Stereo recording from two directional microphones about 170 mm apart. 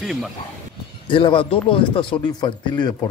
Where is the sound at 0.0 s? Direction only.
Centre (ahead or behind).